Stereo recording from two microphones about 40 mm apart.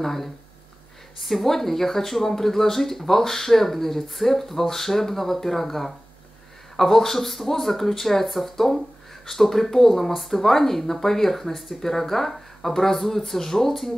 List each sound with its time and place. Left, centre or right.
0.0 s speech: centre